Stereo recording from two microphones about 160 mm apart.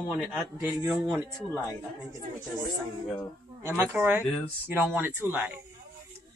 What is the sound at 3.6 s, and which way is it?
Speech, 15° right (ahead or behind).